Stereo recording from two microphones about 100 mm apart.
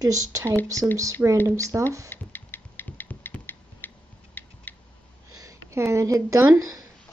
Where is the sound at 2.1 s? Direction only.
20° left (ahead or behind).